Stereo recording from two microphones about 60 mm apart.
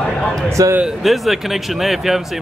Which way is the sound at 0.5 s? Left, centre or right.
Right.